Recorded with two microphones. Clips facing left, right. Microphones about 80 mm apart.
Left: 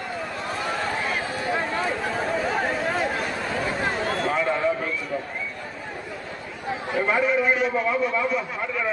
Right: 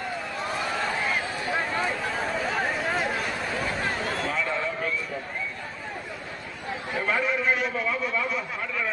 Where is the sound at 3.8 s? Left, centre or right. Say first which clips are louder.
Left 3 dB; left.